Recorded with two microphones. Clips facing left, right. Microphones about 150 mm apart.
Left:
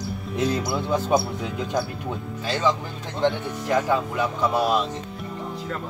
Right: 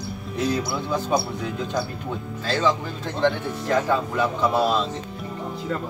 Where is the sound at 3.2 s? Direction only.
15° left (ahead or behind).